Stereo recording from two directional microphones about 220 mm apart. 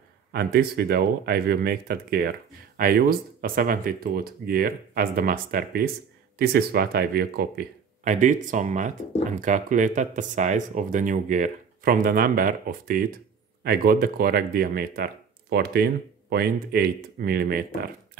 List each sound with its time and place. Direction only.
0.3 s speech: 45° right (ahead or behind)